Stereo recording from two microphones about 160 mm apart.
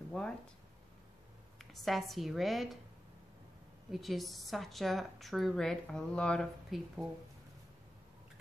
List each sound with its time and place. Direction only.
0.1 s speech: 5° left (ahead or behind)
1.6 s speech: centre (ahead or behind)
3.9 s speech: centre (ahead or behind)